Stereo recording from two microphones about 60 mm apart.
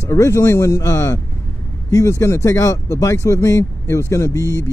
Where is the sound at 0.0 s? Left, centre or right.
Left.